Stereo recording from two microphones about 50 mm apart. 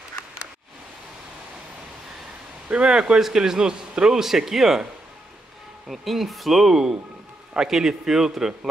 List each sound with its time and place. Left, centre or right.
2.7 s a man's voice: centre
5.9 s a man's voice: centre